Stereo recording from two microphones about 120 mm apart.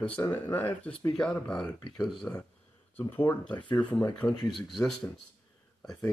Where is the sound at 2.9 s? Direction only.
15° left (ahead or behind).